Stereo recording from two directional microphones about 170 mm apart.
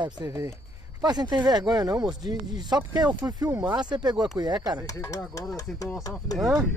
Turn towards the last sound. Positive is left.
turn(degrees=0)  # may be behind; listen again after turning